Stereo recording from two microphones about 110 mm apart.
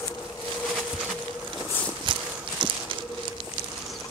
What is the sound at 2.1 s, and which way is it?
Walk, 45° right (ahead or behind).